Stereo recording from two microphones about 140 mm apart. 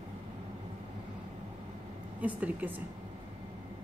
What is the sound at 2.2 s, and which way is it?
Speech, 10° right (ahead or behind).